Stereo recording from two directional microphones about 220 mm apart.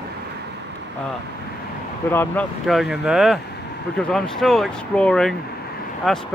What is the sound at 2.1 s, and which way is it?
Speech, 10° left (ahead or behind).